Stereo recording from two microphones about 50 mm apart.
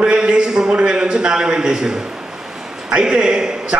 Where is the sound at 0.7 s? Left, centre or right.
Centre.